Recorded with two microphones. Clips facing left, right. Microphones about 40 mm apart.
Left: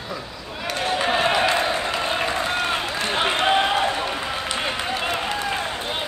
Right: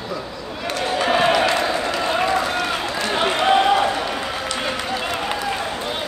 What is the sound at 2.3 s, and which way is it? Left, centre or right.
Run, left.